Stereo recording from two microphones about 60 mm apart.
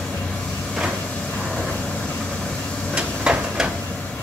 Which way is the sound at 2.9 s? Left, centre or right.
Centre.